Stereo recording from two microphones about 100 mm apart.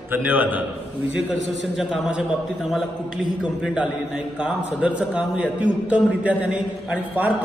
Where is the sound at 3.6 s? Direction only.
10° right (ahead or behind).